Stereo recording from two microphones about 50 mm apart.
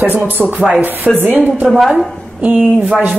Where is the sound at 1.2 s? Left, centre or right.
Right.